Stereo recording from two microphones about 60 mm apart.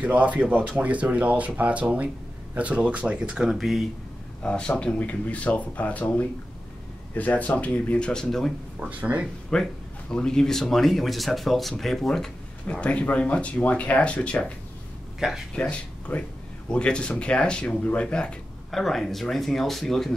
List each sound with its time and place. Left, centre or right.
0.0 s speech: right
3.4 s speech: centre
4.4 s speech: centre
8.1 s speech: centre
8.7 s speech: right
9.5 s speech: centre
12.8 s speech: left
15.1 s a man's voice: centre
15.7 s speech: centre
18.7 s speech: centre